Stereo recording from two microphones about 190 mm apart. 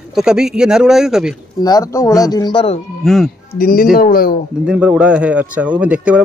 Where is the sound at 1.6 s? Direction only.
20° left (ahead or behind).